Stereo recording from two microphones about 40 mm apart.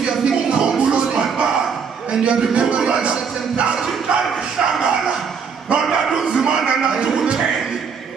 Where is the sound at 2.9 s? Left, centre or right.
Right.